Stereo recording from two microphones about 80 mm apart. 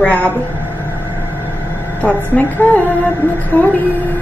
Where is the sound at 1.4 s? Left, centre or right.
Left.